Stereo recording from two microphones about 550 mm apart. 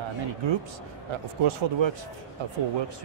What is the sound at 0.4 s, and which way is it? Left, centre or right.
A man's voice, right.